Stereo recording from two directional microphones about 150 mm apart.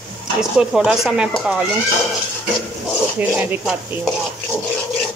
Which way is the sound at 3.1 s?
10° right (ahead or behind).